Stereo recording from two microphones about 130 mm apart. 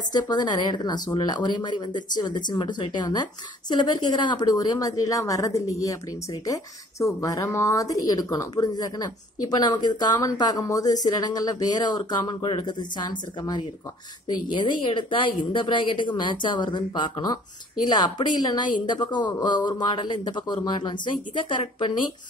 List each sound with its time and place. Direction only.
0.1 s a woman's voice: 35° left (ahead or behind)